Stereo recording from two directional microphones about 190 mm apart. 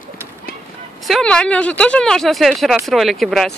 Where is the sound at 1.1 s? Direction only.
5° left (ahead or behind).